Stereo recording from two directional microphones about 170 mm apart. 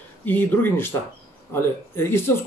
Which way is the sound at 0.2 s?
10° left (ahead or behind).